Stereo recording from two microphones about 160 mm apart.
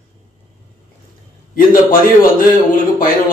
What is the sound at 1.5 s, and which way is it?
Speech, 60° left (ahead or behind).